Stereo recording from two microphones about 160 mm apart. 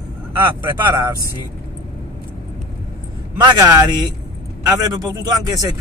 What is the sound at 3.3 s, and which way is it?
A man's voice, 25° right (ahead or behind).